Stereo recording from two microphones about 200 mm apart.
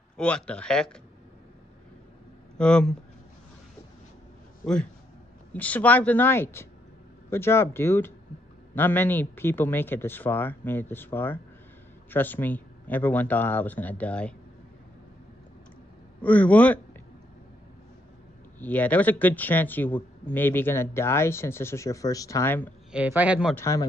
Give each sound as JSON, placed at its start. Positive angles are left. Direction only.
{"t": 0.2, "sound": "speech", "side_deg": 5}
{"t": 2.5, "sound": "speech", "side_deg": 5}
{"t": 5.5, "sound": "speech", "side_deg": 5}
{"t": 16.2, "sound": "speech", "side_deg": 5}
{"t": 18.6, "sound": "speech", "side_deg": 10}
{"t": 22.8, "sound": "a man's voice", "side_deg": -5}
{"t": 23.5, "sound": "speech", "side_deg": 15}